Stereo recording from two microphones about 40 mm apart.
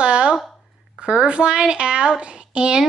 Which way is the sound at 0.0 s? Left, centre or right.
Right.